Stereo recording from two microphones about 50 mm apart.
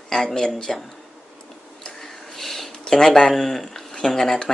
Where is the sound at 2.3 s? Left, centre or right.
Centre.